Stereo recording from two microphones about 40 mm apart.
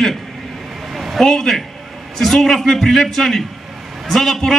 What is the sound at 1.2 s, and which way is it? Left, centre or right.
A man's voice, centre.